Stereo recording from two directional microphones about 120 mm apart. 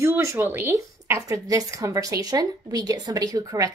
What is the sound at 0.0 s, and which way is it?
A woman's voice, 25° right (ahead or behind).